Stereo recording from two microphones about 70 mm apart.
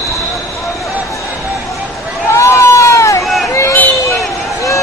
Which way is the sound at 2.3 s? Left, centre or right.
Left.